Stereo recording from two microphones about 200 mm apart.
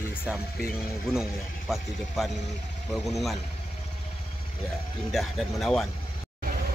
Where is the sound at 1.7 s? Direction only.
Centre (ahead or behind).